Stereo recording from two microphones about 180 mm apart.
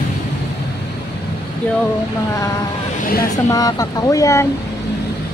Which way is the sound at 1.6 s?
10° left (ahead or behind).